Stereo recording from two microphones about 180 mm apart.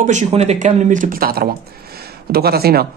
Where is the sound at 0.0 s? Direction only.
40° right (ahead or behind).